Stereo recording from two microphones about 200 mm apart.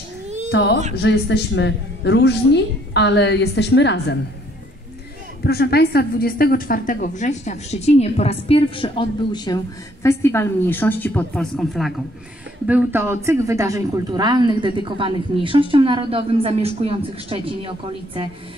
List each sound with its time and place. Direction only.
0.5 s a woman's voice: 55° left (ahead or behind)
5.4 s a woman's voice: 50° left (ahead or behind); by 11.9 s centre (ahead or behind)
12.6 s speech: 10° right (ahead or behind); by 18.3 s 25° right (ahead or behind)